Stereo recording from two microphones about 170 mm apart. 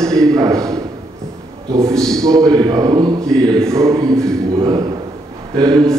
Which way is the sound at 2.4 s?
25° right (ahead or behind).